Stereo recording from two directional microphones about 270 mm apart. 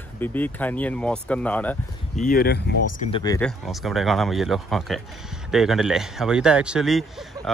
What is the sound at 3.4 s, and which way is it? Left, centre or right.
Speech, centre.